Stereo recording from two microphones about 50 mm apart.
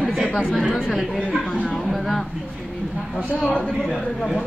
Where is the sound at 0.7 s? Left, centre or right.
Centre.